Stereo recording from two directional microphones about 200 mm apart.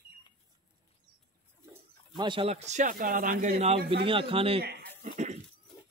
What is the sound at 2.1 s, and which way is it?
Speech, 25° right (ahead or behind).